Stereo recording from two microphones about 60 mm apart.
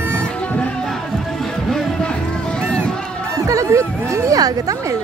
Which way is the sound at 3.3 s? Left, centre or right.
Right.